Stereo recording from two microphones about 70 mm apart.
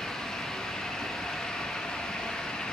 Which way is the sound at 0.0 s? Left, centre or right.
Centre.